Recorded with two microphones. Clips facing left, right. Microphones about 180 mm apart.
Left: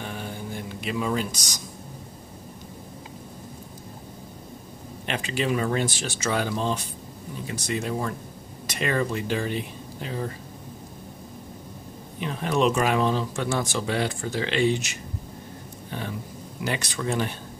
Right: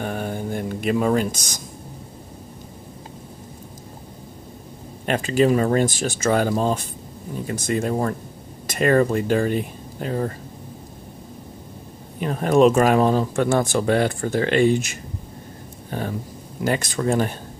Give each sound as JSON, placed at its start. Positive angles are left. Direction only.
{"t": 0.0, "sound": "music", "side_deg": -50}
{"t": 5.0, "sound": "speech", "side_deg": -45}
{"t": 12.2, "sound": "speech", "side_deg": -45}